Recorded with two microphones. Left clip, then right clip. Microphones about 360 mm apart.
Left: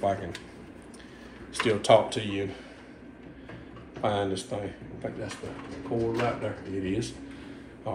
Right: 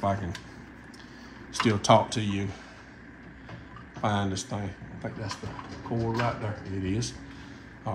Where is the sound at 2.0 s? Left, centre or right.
Centre.